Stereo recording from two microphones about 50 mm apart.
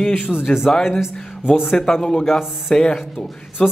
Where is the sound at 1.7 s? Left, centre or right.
Centre.